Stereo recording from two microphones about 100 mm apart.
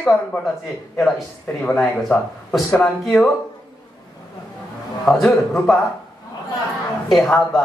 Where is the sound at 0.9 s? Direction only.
Centre (ahead or behind).